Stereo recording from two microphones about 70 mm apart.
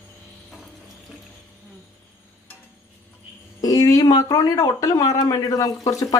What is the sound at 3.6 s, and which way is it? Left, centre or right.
Speech, left.